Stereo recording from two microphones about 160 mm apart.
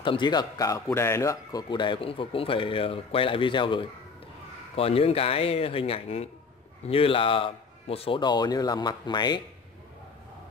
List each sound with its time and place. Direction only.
0.0 s a man's voice: 30° left (ahead or behind)